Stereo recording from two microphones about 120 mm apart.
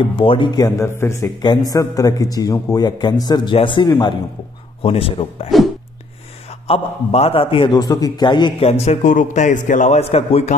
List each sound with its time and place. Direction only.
0.0 s a man's voice: 45° left (ahead or behind); by 1.1 s 25° left (ahead or behind)
1.2 s a man's voice: 35° left (ahead or behind)
4.8 s a man's voice: 50° left (ahead or behind)
6.7 s a man's voice: 60° left (ahead or behind)
7.8 s a man's voice: 30° left (ahead or behind)
8.5 s a man's voice: 60° left (ahead or behind)